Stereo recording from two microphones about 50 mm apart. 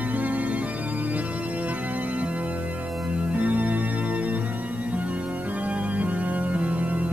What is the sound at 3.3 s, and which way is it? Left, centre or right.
Organ, right.